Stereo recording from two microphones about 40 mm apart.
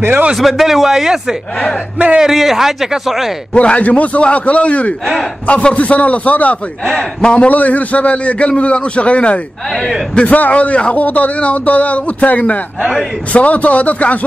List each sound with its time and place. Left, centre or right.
0.4 s speech: centre
2.0 s a man's voice: right
2.2 s speech: centre
3.5 s a man's voice: left
11.0 s a man's voice: left